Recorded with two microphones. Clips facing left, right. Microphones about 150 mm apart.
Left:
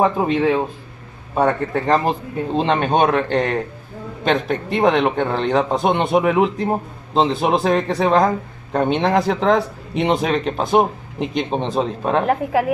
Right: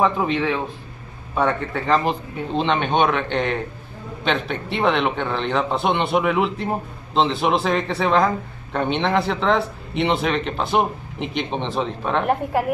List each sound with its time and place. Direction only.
0.0 s speech: 45° left (ahead or behind)